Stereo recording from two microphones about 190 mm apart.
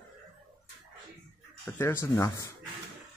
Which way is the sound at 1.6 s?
15° left (ahead or behind).